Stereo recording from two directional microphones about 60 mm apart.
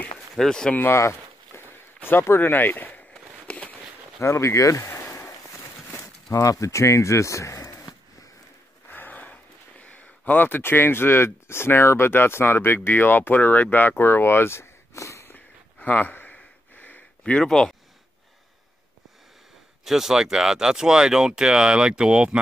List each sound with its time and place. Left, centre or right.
0.4 s speech: centre
0.9 s a sound: left
2.0 s speech: left
3.4 s a sound: centre
4.2 s speech: left
6.3 s speech: left
8.8 s speech: left
15.3 s a sound: left
17.2 s speech: centre
19.8 s speech: centre